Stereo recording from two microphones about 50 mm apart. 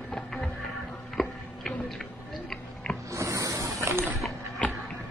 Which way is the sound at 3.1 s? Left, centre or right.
Right.